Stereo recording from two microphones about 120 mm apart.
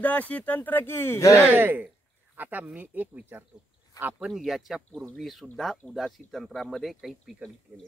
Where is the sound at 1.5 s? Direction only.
20° right (ahead or behind).